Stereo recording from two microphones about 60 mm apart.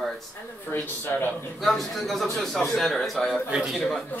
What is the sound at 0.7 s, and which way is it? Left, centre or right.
Speech, left.